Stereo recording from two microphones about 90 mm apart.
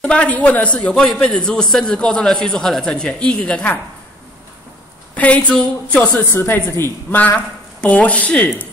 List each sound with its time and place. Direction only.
0.0 s a man's voice: 10° left (ahead or behind)
5.1 s a sound: 15° left (ahead or behind)
5.5 s a man's voice: 10° left (ahead or behind)